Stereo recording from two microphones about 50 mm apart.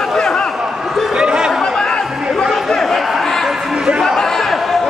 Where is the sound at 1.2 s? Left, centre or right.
Centre.